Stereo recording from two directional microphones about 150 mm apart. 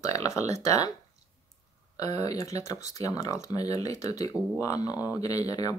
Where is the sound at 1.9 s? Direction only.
25° left (ahead or behind).